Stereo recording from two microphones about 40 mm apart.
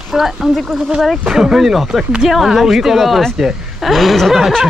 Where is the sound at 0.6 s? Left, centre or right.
Centre.